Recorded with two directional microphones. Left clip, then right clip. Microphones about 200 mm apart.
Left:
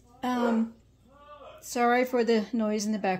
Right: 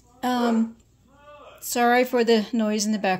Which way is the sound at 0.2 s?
35° right (ahead or behind).